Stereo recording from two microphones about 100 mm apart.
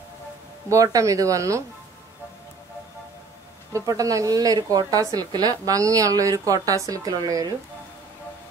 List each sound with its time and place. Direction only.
0.7 s a woman's voice: 35° right (ahead or behind)
3.7 s a woman's voice: 35° right (ahead or behind)